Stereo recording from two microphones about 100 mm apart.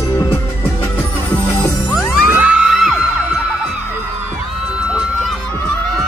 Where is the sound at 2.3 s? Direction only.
10° right (ahead or behind).